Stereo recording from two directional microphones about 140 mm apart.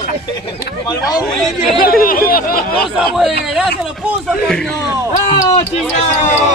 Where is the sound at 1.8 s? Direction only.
90° left.